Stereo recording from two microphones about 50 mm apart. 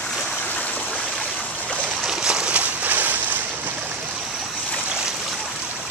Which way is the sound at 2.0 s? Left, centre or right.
Centre.